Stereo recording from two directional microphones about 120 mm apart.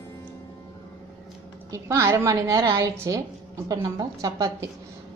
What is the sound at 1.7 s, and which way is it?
A woman's voice, 25° right (ahead or behind).